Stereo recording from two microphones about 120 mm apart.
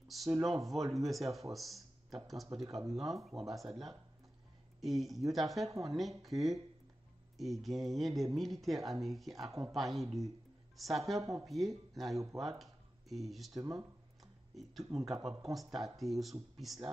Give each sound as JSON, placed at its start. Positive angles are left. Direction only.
{"t": 0.1, "sound": "speech", "side_deg": 0}
{"t": 13.5, "sound": "speech", "side_deg": -30}
{"t": 14.5, "sound": "speech", "side_deg": 0}